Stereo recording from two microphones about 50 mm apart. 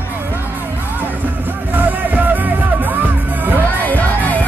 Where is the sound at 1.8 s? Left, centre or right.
Right.